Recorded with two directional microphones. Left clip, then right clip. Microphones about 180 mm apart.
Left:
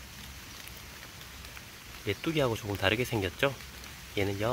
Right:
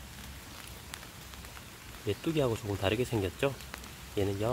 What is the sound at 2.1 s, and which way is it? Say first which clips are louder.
Speech: left 1 dB; 5° left (ahead or behind).